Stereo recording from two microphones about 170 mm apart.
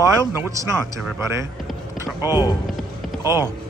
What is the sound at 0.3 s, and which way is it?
Speech, 15° right (ahead or behind).